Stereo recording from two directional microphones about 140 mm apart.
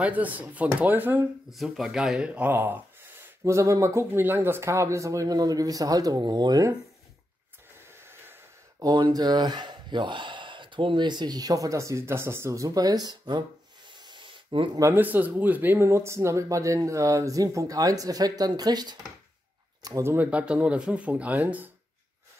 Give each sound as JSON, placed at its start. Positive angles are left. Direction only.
{"t": 0.0, "sound": "speech", "side_deg": -10}
{"t": 1.5, "sound": "speech", "side_deg": 0}
{"t": 8.0, "sound": "speech", "side_deg": -15}
{"t": 14.0, "sound": "a sound", "side_deg": -35}
{"t": 14.8, "sound": "speech", "side_deg": -15}